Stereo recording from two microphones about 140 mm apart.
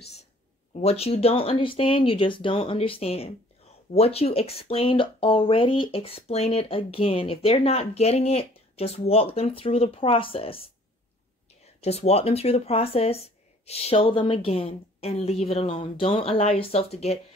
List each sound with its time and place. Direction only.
0.7 s speech: 45° left (ahead or behind)
11.6 s speech: 50° left (ahead or behind)